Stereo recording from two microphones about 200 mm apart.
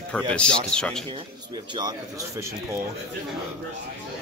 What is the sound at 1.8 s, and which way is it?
Speech, 20° right (ahead or behind).